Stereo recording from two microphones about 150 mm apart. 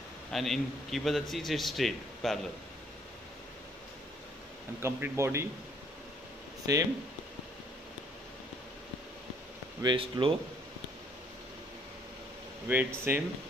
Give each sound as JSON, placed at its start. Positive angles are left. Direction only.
{"t": 0.3, "sound": "a man's voice", "side_deg": 0}
{"t": 4.7, "sound": "speech", "side_deg": -15}
{"t": 6.6, "sound": "speech", "side_deg": -20}
{"t": 9.8, "sound": "speech", "side_deg": -30}
{"t": 12.6, "sound": "speech", "side_deg": -15}